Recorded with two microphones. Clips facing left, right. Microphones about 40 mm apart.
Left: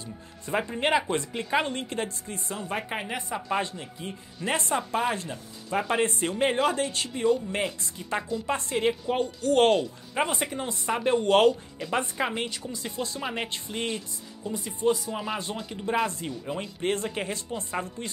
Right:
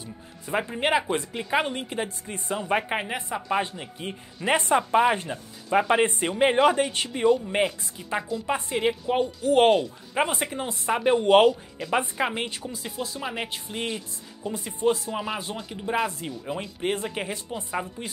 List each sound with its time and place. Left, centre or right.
0.5 s a woman's voice: centre
2.3 s speech: right
8.0 s a woman's voice: centre
14.8 s speech: right
15.1 s a woman's voice: centre